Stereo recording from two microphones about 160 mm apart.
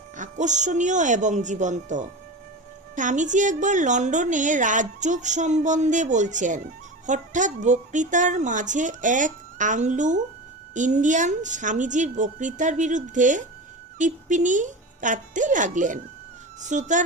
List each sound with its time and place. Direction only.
0.2 s a woman's voice: 50° right (ahead or behind)